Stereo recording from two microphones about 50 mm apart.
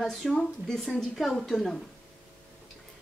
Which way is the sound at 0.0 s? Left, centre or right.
Centre.